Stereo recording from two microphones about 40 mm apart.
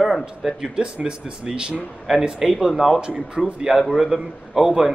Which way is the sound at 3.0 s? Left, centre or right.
Right.